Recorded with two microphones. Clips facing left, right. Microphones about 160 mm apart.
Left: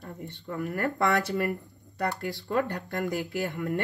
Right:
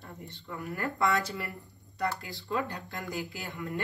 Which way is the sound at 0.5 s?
65° left (ahead or behind).